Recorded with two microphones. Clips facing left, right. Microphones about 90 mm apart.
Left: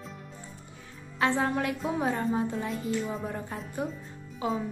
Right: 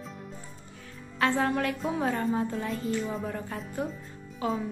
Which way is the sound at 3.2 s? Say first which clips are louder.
Right 1 dB; 20° left (ahead or behind).